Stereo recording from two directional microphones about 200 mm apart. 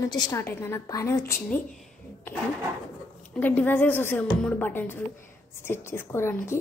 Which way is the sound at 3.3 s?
10° left (ahead or behind).